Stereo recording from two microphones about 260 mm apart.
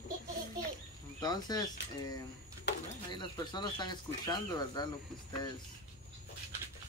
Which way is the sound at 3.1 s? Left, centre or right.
Centre.